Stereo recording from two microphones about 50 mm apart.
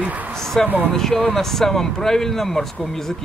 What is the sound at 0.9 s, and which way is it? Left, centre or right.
Speech, centre.